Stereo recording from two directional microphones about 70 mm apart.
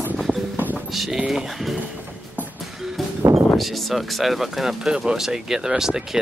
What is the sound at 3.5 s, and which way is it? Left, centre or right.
Speech, centre.